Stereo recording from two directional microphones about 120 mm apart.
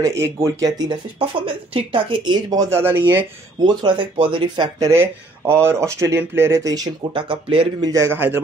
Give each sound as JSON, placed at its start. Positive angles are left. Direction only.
{"t": 0.0, "sound": "speech", "side_deg": -25}
{"t": 1.4, "sound": "a woman's voice", "side_deg": -50}
{"t": 2.5, "sound": "speech", "side_deg": -25}
{"t": 3.6, "sound": "speech", "side_deg": -40}
{"t": 4.7, "sound": "speech", "side_deg": -25}
{"t": 7.2, "sound": "a woman's voice", "side_deg": -45}
{"t": 7.9, "sound": "speech", "side_deg": -20}